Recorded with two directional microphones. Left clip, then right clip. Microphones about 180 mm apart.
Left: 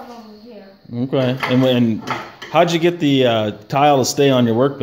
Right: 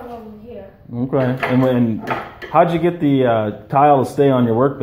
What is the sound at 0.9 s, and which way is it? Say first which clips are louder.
Speech: even; 25° left (ahead or behind).